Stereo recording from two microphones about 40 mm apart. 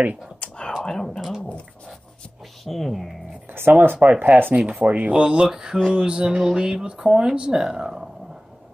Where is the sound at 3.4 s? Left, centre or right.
Right.